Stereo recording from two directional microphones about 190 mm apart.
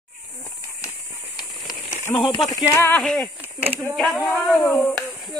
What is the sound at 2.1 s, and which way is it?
Speech, 30° left (ahead or behind).